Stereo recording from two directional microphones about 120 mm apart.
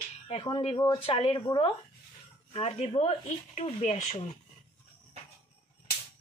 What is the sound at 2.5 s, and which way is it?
Speech, 60° left (ahead or behind).